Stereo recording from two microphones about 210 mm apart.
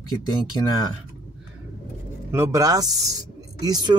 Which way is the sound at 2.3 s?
15° right (ahead or behind).